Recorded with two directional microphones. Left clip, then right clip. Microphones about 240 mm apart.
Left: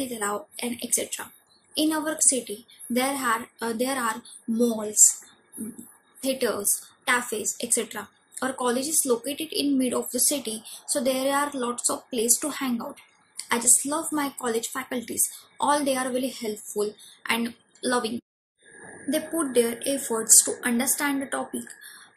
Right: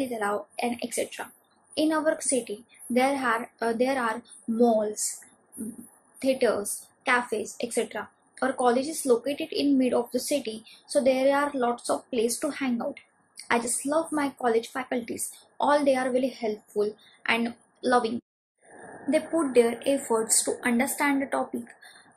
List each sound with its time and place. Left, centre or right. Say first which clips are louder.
0.0 s a woman's voice: right 1 dB; left
6.2 s a woman's voice: right 2 dB; left